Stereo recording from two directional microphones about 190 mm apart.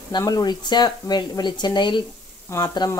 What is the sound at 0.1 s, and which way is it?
Speech, 20° left (ahead or behind).